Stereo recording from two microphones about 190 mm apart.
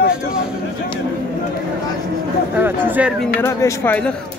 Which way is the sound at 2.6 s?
10° right (ahead or behind).